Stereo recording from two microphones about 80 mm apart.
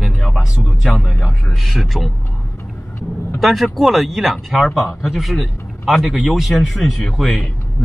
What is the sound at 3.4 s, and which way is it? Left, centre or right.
Speech, centre.